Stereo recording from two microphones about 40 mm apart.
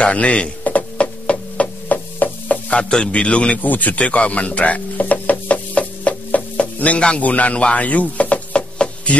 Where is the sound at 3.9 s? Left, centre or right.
Left.